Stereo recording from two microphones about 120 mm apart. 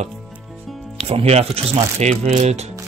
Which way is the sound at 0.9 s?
55° right (ahead or behind).